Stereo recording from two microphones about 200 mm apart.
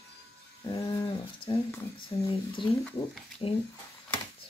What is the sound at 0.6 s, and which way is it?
Speech, 20° left (ahead or behind).